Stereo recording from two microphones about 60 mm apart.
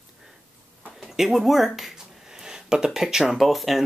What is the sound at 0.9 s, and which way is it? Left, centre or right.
Speech, centre.